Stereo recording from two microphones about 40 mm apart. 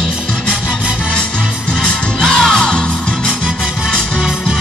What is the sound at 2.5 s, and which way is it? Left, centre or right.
Music, centre.